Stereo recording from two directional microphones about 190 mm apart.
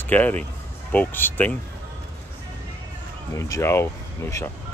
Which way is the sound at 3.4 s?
15° left (ahead or behind).